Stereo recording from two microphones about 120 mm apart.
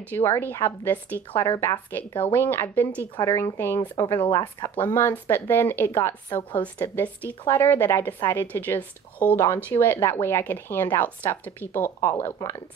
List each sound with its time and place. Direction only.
0.1 s a woman's voice: 20° left (ahead or behind)
4.3 s speech: 30° left (ahead or behind)
4.7 s a woman's voice: 15° left (ahead or behind)